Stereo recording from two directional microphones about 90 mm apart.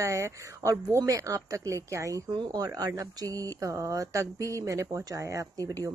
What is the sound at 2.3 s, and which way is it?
Speech, 50° right (ahead or behind).